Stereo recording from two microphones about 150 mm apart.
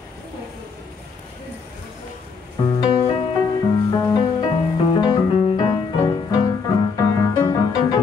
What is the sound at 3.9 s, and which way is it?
Music, 25° left (ahead or behind).